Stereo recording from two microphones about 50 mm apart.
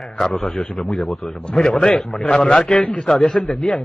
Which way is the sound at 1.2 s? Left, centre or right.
Centre.